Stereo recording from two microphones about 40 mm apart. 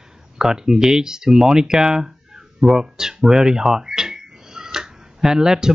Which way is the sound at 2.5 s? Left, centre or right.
Centre.